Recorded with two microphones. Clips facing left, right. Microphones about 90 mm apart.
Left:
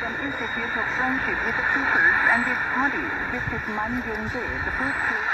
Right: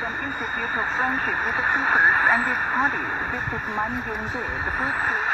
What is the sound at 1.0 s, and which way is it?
Speech, 40° right (ahead or behind).